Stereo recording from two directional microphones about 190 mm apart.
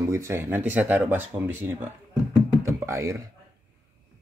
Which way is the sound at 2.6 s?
15° right (ahead or behind).